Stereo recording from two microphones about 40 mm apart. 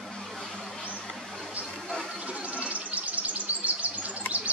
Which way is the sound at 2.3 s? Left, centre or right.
Right.